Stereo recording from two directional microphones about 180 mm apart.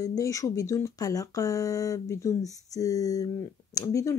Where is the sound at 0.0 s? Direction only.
20° left (ahead or behind).